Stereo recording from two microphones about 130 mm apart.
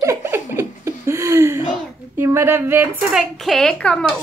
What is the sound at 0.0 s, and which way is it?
Laughter, 20° right (ahead or behind).